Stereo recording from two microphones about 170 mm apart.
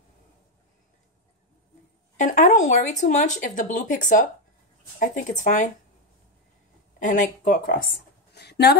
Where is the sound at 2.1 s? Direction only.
45° left (ahead or behind).